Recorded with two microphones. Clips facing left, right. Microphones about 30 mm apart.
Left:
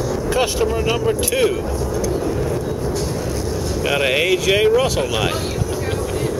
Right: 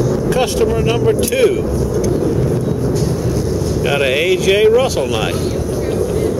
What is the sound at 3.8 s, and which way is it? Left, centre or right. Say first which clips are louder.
Speech: right 2 dB; centre.